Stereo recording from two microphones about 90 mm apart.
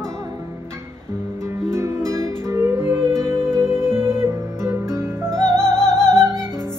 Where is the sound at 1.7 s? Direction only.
30° right (ahead or behind).